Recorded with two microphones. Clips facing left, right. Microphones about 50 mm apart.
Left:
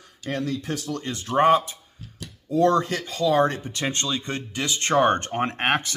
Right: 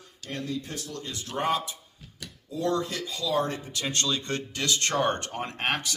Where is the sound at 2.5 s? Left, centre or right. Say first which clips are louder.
Left 8 dB; left.